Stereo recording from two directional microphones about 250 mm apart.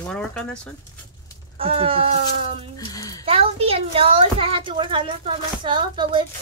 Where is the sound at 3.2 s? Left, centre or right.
Right.